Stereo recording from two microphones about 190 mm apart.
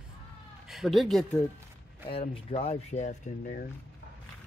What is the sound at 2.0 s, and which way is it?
Speech, 30° left (ahead or behind).